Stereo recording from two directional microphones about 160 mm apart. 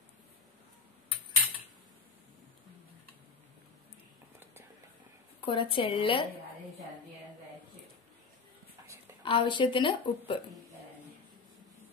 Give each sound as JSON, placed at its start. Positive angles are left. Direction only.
{"t": 5.4, "sound": "a woman's voice", "side_deg": 30}
{"t": 9.2, "sound": "a woman's voice", "side_deg": 30}